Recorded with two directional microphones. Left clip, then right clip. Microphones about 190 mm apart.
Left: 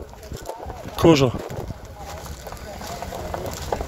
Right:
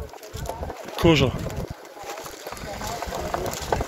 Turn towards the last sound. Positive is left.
turn(degrees=10)  # may be behind; listen again after turning